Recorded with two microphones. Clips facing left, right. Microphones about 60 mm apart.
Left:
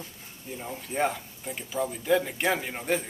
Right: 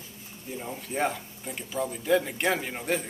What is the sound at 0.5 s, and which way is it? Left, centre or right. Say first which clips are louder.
Speech: even; centre.